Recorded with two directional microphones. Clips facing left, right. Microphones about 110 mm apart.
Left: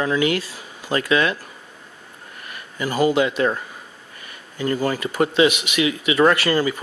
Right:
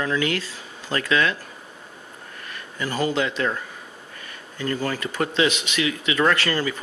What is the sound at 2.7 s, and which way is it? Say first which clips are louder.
Speech: left 5 dB; 15° left (ahead or behind).